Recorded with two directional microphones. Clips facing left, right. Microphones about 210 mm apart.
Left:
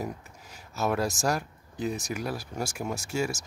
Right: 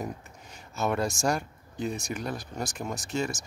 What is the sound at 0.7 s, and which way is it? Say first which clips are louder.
Speech: even; 5° left (ahead or behind).